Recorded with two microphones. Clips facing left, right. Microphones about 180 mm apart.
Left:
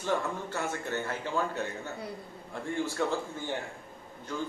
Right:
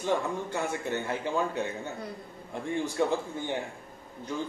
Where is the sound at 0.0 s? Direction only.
15° right (ahead or behind).